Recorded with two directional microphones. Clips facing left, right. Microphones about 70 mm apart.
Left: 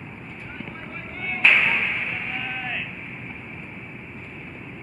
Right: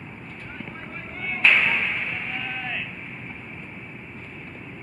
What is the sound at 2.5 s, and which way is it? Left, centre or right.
Vehicle, centre.